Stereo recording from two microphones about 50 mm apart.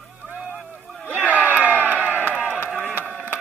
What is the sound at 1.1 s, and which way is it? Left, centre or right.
Crowd, right.